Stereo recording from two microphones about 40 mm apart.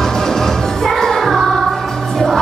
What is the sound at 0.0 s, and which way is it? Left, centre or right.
Music, centre.